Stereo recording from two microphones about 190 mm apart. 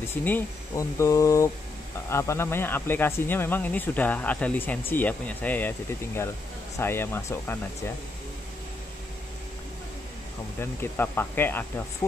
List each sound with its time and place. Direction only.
0.2 s speech: 10° left (ahead or behind)
10.6 s speech: 10° left (ahead or behind)